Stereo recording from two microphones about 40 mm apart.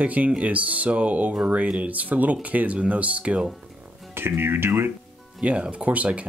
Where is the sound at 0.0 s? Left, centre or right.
Right.